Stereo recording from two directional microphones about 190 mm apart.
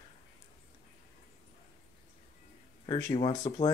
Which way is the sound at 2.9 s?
15° left (ahead or behind).